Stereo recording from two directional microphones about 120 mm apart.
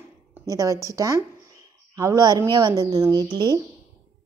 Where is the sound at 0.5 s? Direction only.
25° right (ahead or behind).